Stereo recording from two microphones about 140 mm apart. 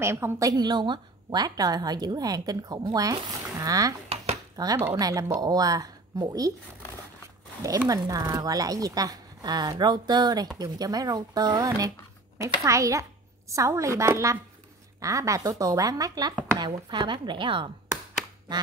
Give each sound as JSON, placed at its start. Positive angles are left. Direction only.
{"t": 0.0, "sound": "a woman's voice", "side_deg": -20}
{"t": 7.9, "sound": "a woman's voice", "side_deg": -25}
{"t": 16.5, "sound": "chopping", "side_deg": -30}